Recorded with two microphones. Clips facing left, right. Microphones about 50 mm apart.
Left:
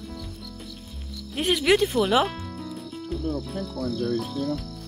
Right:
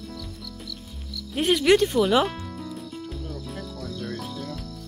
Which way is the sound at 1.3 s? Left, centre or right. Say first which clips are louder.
Right 2 dB; centre.